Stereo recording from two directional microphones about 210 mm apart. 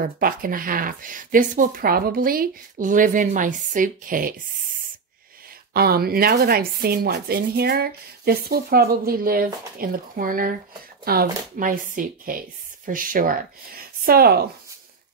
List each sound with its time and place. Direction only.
0.0 s speech: 40° right (ahead or behind)
5.7 s speech: 45° right (ahead or behind)